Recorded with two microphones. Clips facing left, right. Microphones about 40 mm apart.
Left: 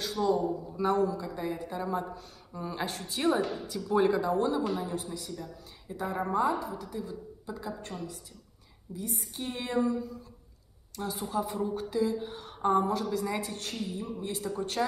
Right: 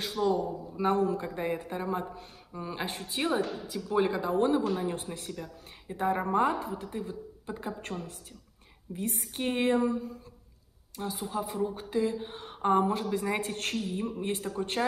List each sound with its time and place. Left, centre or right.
0.0 s a man's voice: right
1.0 s a woman's voice: right
3.6 s speech: centre
4.2 s a woman's voice: right
11.0 s speech: centre
12.0 s a woman's voice: right